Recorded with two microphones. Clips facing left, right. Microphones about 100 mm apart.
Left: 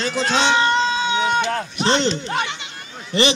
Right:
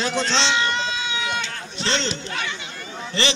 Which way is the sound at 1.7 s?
15° left (ahead or behind).